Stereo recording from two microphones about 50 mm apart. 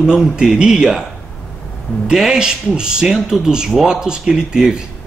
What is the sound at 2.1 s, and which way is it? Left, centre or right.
A man's voice, centre.